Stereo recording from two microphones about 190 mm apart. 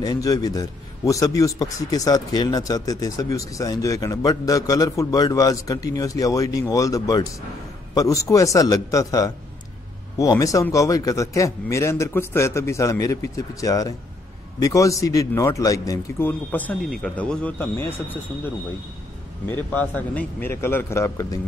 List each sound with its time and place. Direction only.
0.0 s a man's voice: 20° left (ahead or behind)
19.5 s speech: 10° left (ahead or behind)